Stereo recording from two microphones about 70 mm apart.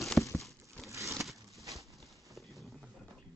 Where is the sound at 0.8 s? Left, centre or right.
Right.